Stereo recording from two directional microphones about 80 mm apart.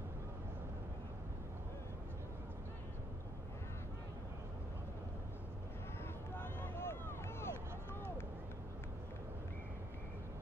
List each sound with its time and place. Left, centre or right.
6.3 s vehicle: left